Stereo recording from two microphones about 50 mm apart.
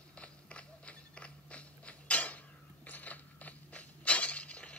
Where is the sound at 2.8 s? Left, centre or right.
Left.